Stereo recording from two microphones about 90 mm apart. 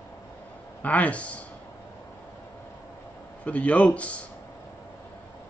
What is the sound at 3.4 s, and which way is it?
Speech, 15° left (ahead or behind).